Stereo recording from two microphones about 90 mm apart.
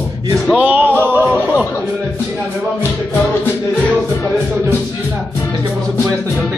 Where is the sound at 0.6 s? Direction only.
15° right (ahead or behind).